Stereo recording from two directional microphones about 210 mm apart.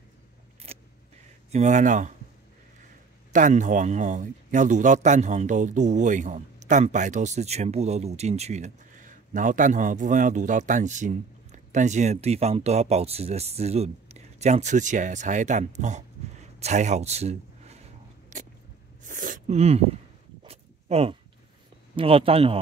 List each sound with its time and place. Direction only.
0.7 s vehicle: 30° right (ahead or behind)
1.5 s a man's voice: 35° right (ahead or behind)
3.3 s a man's voice: 35° right (ahead or behind)
18.3 s vehicle: 35° right (ahead or behind)
19.0 s a sound: 40° right (ahead or behind)
20.4 s zipper: 30° right (ahead or behind)
21.9 s speech: 25° right (ahead or behind)